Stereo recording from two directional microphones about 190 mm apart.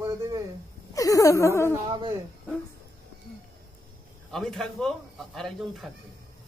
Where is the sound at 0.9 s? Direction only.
15° left (ahead or behind).